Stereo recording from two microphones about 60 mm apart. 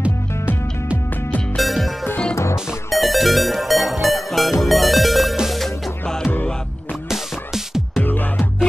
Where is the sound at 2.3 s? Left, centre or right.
Left.